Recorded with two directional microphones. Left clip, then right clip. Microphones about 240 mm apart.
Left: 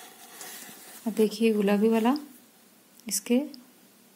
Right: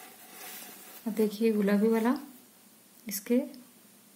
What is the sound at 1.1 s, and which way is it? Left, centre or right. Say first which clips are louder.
Speech: left 3 dB; left.